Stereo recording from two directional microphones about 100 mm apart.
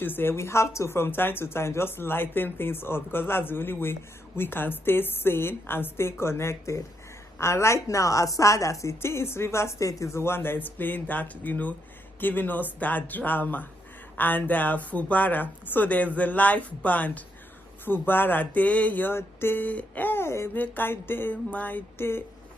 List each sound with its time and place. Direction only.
0.0 s speech: 20° left (ahead or behind)